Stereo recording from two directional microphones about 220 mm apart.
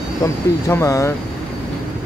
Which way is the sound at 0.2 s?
15° left (ahead or behind).